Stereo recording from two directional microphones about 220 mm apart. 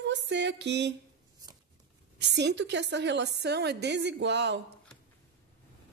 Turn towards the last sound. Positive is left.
turn(degrees=-55)  # may be behind; listen again after turning